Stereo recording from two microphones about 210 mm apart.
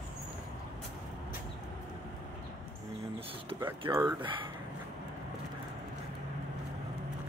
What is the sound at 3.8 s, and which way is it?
Speech, 20° right (ahead or behind).